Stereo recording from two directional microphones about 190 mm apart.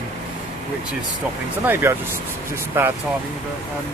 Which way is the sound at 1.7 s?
10° right (ahead or behind).